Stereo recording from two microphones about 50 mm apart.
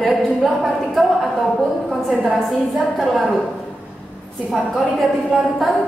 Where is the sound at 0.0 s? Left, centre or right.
Centre.